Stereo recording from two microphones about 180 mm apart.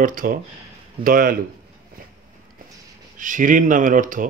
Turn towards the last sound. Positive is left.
turn(degrees=-50)  # may be behind; listen again after turning